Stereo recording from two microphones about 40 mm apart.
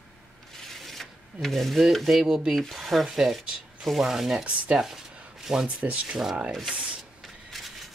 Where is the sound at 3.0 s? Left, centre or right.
Centre.